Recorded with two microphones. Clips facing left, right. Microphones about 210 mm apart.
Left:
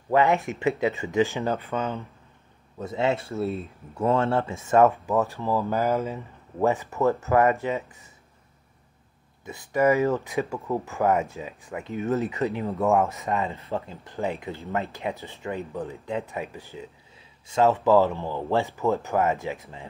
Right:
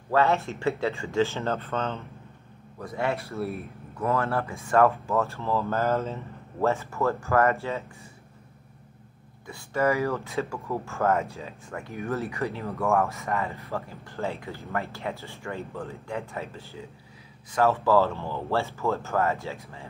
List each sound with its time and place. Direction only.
0.1 s speech: 15° left (ahead or behind)
2.8 s speech: 25° left (ahead or behind)
9.5 s speech: 15° left (ahead or behind)